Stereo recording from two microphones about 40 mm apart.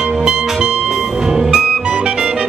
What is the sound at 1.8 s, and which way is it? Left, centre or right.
Music, right.